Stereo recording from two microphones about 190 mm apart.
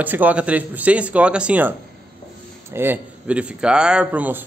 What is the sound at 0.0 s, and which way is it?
Speech, 10° right (ahead or behind).